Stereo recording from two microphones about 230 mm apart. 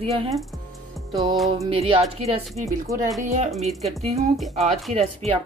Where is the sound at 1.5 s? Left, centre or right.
Right.